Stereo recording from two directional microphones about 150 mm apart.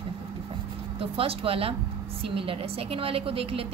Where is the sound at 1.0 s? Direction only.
40° right (ahead or behind).